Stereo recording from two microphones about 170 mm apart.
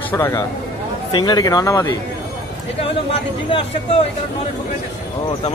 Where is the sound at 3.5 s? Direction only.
35° left (ahead or behind).